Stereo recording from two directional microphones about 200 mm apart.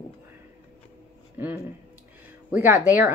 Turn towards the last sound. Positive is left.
turn(degrees=-10)  # may be behind; listen again after turning